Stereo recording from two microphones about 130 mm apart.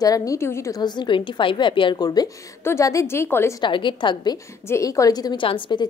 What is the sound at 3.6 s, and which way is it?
Speech, 40° left (ahead or behind).